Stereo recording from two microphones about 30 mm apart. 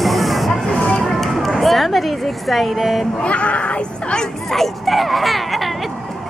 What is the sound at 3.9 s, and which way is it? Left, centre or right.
Speech, left.